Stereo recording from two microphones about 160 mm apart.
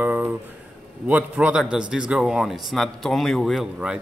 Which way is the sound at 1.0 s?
10° right (ahead or behind).